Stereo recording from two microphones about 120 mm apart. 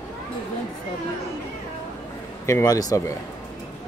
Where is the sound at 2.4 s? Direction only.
25° left (ahead or behind).